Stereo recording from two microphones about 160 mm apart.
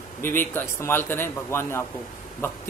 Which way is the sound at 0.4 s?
15° left (ahead or behind).